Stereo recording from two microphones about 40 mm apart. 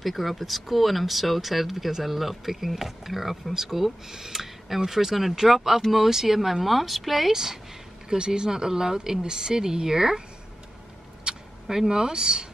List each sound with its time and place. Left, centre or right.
0.0 s speech: centre
11.3 s a sound: centre
11.6 s speech: centre
11.9 s speech: centre